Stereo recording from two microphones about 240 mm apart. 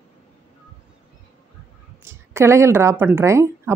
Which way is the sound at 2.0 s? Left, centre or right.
Centre.